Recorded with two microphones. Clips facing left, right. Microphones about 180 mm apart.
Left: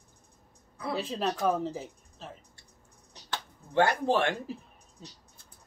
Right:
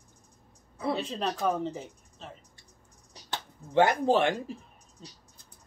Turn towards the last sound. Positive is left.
turn(degrees=5)  # may be behind; listen again after turning